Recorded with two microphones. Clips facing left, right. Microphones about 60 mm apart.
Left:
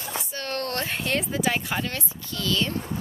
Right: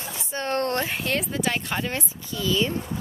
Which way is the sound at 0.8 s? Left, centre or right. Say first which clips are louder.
Right 1 dB; centre.